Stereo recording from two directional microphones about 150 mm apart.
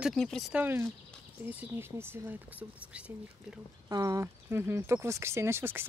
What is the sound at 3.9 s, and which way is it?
Speech, 25° right (ahead or behind).